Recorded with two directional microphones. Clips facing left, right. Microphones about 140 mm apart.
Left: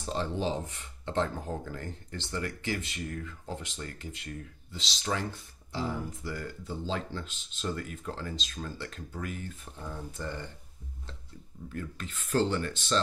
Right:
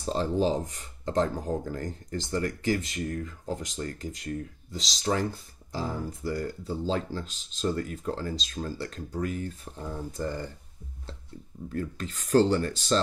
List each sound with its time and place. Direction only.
0.0 s speech: 35° right (ahead or behind)
11.7 s speech: 35° right (ahead or behind)